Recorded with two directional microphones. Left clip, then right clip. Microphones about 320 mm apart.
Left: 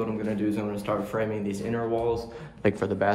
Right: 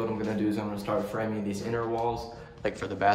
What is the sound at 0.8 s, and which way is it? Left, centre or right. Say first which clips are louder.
Speech: left 2 dB; centre.